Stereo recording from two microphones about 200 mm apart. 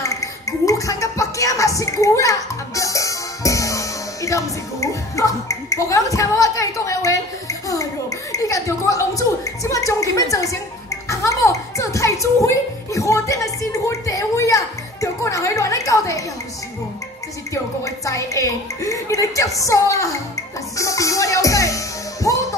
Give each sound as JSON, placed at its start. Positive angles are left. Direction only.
{"t": 0.0, "sound": "music", "side_deg": 15}
{"t": 17.8, "sound": "a woman's voice", "side_deg": 15}
{"t": 20.7, "sound": "music", "side_deg": 15}